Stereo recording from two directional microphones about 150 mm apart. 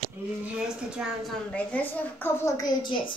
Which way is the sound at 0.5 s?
5° right (ahead or behind).